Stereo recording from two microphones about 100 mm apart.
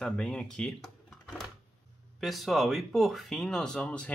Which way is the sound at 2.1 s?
Centre (ahead or behind).